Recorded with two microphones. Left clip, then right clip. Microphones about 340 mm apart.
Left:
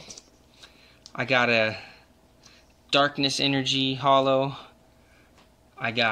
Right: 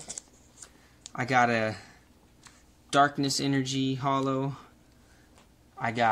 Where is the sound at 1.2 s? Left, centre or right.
Left.